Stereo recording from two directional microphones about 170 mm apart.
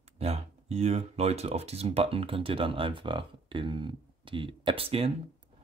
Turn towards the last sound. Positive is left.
turn(degrees=-35)  # may be behind; listen again after turning